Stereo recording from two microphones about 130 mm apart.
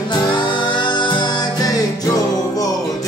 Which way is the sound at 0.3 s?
40° left (ahead or behind).